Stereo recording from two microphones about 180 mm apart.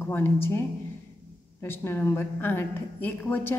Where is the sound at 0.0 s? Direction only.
15° left (ahead or behind).